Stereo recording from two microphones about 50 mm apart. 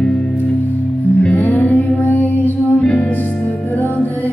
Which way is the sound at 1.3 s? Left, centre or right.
Left.